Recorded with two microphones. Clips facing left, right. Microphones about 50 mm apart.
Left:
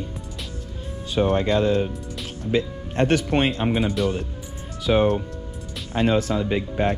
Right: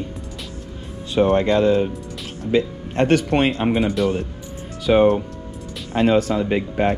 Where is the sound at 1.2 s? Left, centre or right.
Right.